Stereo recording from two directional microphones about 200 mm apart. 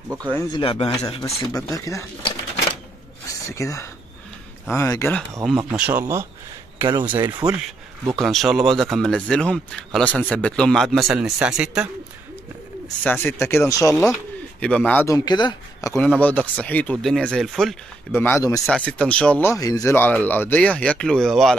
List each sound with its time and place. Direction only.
0.1 s speech: 20° right (ahead or behind)
0.4 s speech: 20° left (ahead or behind)
1.5 s speech: 15° left (ahead or behind)
3.3 s speech: 15° left (ahead or behind)
5.7 s speech: 5° right (ahead or behind)
8.1 s speech: centre (ahead or behind)
12.8 s speech: 5° left (ahead or behind)
16.0 s speech: 5° left (ahead or behind)
18.1 s speech: 10° left (ahead or behind)